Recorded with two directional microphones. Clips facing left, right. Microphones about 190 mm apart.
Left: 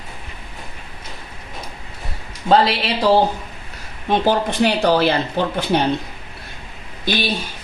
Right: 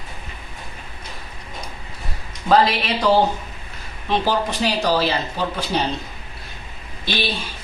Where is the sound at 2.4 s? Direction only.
30° left (ahead or behind).